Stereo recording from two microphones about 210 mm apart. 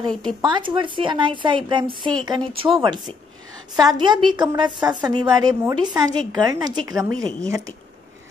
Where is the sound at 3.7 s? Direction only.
20° right (ahead or behind).